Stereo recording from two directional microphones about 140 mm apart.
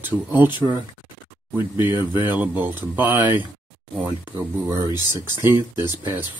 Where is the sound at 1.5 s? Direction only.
15° right (ahead or behind).